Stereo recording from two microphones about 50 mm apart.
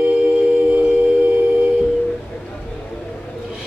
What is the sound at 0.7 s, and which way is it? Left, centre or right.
Humming, right.